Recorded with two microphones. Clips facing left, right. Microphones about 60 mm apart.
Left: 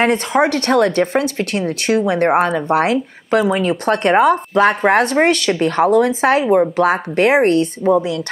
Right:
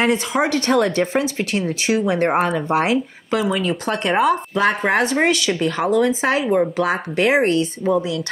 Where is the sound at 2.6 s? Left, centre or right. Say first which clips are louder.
Left 3 dB; left.